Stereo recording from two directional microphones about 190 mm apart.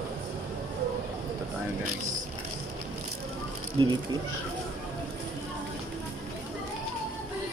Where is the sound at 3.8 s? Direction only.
25° right (ahead or behind).